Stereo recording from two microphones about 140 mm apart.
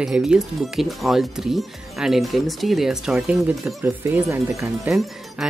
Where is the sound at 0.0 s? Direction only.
5° right (ahead or behind).